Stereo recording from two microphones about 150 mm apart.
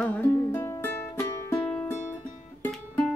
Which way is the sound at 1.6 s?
10° left (ahead or behind).